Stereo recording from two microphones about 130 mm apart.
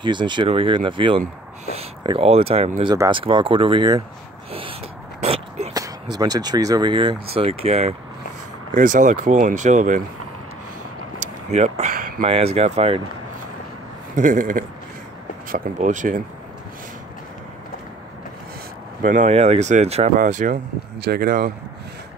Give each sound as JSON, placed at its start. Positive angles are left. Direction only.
{"t": 0.0, "sound": "speech", "side_deg": -35}
{"t": 2.9, "sound": "speech", "side_deg": -35}
{"t": 4.5, "sound": "a sound", "side_deg": -45}
{"t": 5.7, "sound": "speech", "side_deg": -30}
{"t": 8.7, "sound": "speech", "side_deg": -75}
{"t": 11.1, "sound": "a sound", "side_deg": -60}
{"t": 12.3, "sound": "speech", "side_deg": -50}
{"t": 14.1, "sound": "speech", "side_deg": -90}
{"t": 15.5, "sound": "speech", "side_deg": -75}
{"t": 19.0, "sound": "speech", "side_deg": -80}
{"t": 19.3, "sound": "speech", "side_deg": -55}